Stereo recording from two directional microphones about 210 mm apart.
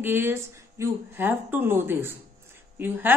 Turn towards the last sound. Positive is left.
turn(degrees=-10)  # may be behind; listen again after turning